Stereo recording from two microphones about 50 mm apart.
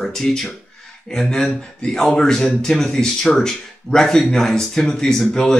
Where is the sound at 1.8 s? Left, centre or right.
Left.